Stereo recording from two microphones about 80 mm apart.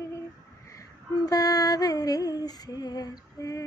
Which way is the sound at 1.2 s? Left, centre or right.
Left.